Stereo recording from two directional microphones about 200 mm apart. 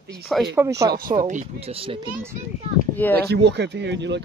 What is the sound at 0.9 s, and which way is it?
Speech, 45° right (ahead or behind).